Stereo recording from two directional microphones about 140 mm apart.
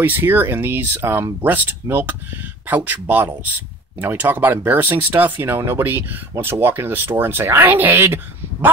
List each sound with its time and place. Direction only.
0.0 s speech: 15° right (ahead or behind)